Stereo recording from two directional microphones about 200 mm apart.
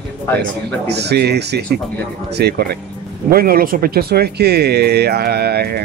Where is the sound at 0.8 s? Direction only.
55° right (ahead or behind).